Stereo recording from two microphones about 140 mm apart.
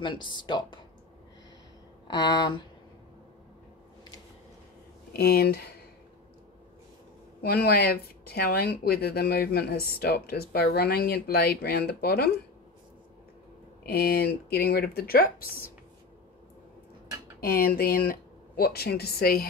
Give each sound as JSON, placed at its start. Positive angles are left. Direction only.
{"t": 0.0, "sound": "speech", "side_deg": 35}
{"t": 2.0, "sound": "speech", "side_deg": 30}
{"t": 5.1, "sound": "speech", "side_deg": 90}
{"t": 7.4, "sound": "speech", "side_deg": 90}
{"t": 13.9, "sound": "speech", "side_deg": 90}
{"t": 17.4, "sound": "speech", "side_deg": 90}
{"t": 19.1, "sound": "speech", "side_deg": 90}